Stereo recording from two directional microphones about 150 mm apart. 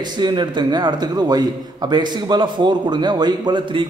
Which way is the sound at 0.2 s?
30° right (ahead or behind).